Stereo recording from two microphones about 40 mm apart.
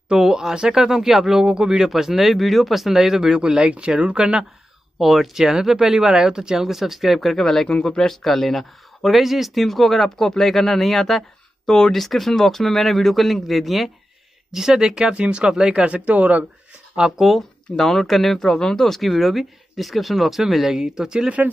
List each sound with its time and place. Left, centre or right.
0.1 s speech: centre
4.9 s speech: centre
6.6 s speech: centre
7.2 s speech: centre
7.6 s speech: centre
8.1 s speech: centre
11.6 s speech: centre
11.9 s speech: centre
14.5 s speech: centre; by 16.4 s right
17.0 s speech: centre
17.4 s speech: centre
18.9 s speech: centre